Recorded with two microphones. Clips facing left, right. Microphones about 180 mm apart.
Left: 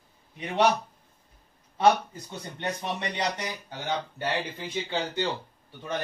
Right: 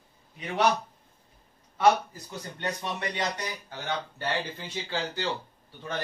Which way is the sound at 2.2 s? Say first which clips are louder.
Left 2 dB; 20° left (ahead or behind).